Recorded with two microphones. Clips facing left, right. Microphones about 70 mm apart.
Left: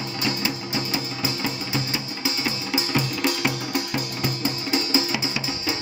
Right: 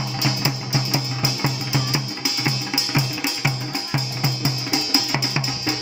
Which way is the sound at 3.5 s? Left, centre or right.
Left.